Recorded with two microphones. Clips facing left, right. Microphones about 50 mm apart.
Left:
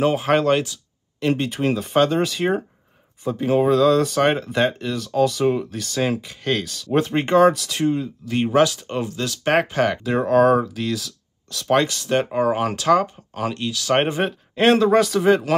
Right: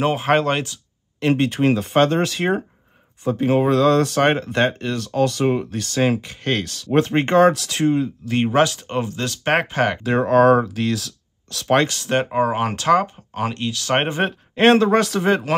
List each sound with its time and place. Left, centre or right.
0.0 s speech: centre
1.8 s speech: centre
3.3 s speech: centre
3.7 s speech: centre
8.8 s speech: right
10.1 s speech: centre
12.1 s speech: centre
14.7 s speech: centre